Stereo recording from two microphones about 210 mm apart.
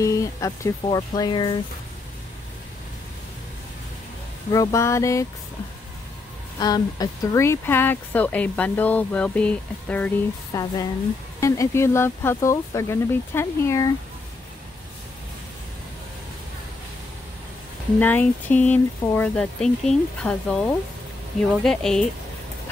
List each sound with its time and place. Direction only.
0.0 s speech: 15° left (ahead or behind)
4.5 s speech: 15° left (ahead or behind)
6.6 s speech: 20° left (ahead or behind)
10.5 s speech: 20° left (ahead or behind)
17.9 s speech: 10° left (ahead or behind)